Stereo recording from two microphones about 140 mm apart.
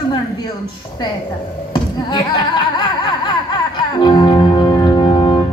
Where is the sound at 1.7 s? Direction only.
30° left (ahead or behind).